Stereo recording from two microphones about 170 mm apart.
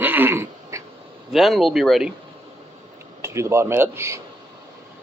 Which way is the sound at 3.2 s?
15° right (ahead or behind).